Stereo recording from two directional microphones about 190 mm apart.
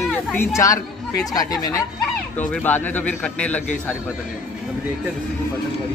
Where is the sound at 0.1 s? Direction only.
10° left (ahead or behind).